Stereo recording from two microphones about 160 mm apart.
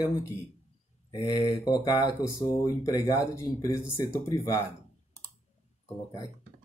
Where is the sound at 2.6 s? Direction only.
20° left (ahead or behind).